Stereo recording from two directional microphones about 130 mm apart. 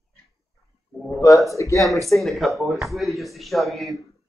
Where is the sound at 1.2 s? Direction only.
25° left (ahead or behind).